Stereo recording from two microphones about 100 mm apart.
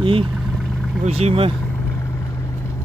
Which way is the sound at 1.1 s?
80° right.